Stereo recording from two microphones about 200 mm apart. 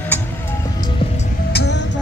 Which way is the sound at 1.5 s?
55° left (ahead or behind).